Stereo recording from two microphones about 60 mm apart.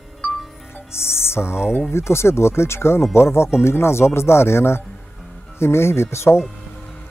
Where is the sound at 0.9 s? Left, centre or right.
Left.